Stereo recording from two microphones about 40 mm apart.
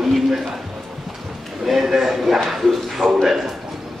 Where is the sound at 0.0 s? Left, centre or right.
Centre.